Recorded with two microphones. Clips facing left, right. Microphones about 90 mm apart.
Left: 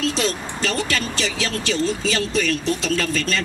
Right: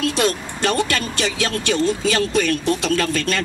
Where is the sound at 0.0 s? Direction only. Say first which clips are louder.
Right 3 dB; 55° right (ahead or behind).